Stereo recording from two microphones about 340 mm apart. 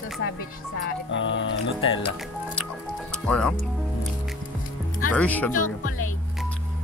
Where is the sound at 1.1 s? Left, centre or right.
Left.